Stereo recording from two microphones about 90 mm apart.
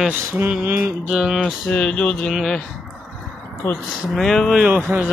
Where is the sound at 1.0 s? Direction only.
5° right (ahead or behind).